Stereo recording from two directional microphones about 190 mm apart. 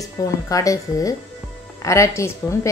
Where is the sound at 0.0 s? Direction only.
20° left (ahead or behind).